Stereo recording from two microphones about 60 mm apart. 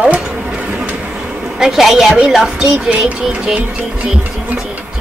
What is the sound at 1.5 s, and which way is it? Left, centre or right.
Speech, centre.